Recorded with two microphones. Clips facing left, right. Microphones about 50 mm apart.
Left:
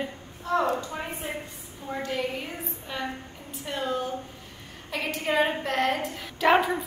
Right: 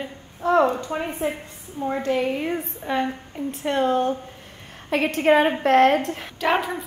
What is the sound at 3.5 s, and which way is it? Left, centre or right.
A woman's voice, right.